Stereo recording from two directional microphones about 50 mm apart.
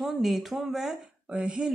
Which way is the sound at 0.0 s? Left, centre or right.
Centre.